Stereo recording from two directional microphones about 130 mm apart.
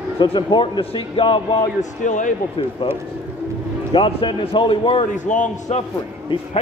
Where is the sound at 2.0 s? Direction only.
75° left (ahead or behind).